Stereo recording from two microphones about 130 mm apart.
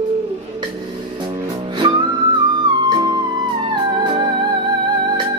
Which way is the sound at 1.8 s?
40° right (ahead or behind).